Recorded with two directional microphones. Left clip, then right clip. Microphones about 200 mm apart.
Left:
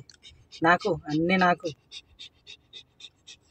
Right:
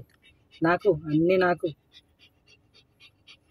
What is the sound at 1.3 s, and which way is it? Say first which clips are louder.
Speech: left 1 dB; 15° left (ahead or behind).